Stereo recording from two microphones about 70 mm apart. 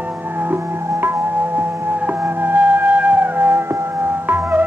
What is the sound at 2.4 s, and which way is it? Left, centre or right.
Music, right.